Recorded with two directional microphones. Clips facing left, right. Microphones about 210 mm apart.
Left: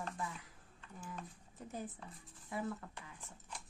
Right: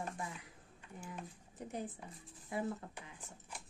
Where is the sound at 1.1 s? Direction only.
15° right (ahead or behind).